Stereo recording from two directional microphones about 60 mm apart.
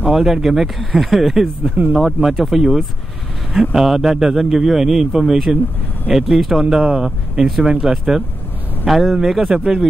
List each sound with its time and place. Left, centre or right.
0.0 s a man's voice: centre
1.6 s speech: right
2.1 s a man's voice: centre